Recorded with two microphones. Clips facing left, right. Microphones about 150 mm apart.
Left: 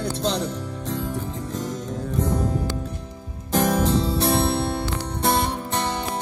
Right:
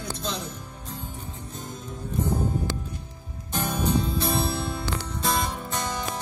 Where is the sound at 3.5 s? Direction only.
90° left.